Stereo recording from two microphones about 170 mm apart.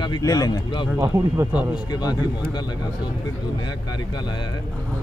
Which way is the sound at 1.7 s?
25° left (ahead or behind).